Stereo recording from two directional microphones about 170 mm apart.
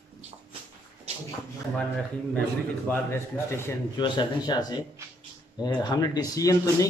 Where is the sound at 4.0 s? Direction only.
25° left (ahead or behind).